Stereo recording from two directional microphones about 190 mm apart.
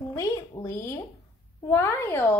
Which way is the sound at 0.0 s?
15° left (ahead or behind).